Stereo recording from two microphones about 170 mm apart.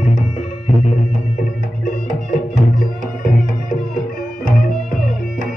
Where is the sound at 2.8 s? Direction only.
55° left (ahead or behind).